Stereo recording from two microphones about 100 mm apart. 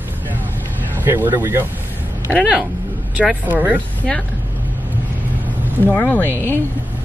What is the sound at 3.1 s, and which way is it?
Speech, 15° right (ahead or behind).